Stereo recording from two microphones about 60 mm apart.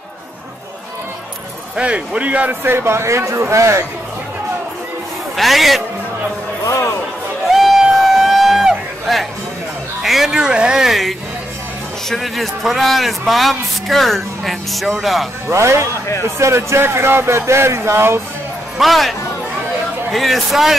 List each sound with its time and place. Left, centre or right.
1.8 s speech: right
2.6 s speech: right
5.3 s a man's voice: centre
6.6 s speech: left
7.4 s a sound: centre
10.0 s speech: centre
15.4 s speech: right
18.8 s speech: centre